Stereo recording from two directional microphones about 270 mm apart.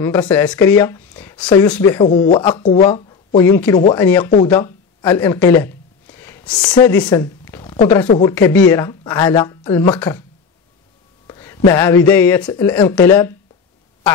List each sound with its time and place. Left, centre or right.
0.0 s speech: centre
11.2 s a sound: centre
12.1 s speech: centre